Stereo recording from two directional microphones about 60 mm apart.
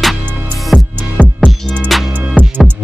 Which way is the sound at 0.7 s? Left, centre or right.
Right.